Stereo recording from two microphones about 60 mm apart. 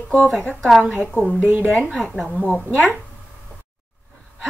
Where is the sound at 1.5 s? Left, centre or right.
Right.